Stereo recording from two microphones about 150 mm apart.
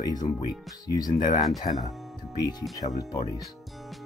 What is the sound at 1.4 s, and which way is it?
Speech, centre (ahead or behind).